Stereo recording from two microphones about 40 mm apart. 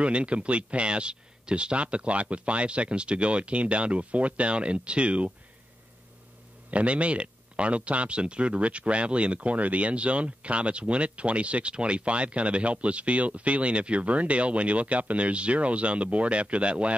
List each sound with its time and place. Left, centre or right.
0.0 s speech: right
6.7 s speech: right